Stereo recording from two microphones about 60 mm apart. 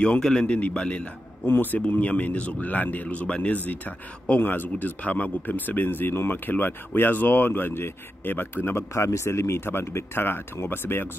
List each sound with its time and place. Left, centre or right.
0.2 s a man's voice: centre
1.4 s speech: left
8.9 s speech: left